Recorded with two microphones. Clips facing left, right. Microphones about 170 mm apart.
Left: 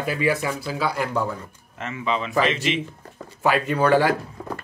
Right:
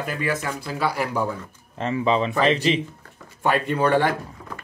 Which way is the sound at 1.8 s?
35° right (ahead or behind).